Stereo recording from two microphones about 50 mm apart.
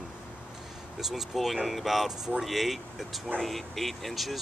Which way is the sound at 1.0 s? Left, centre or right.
Centre.